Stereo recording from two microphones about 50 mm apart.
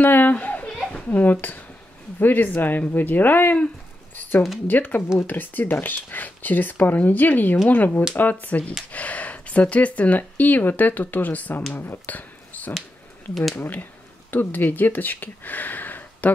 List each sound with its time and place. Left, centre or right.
0.0 s children playing: left
1.0 s speech: left